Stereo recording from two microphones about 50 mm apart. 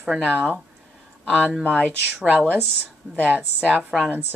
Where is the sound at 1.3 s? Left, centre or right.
Right.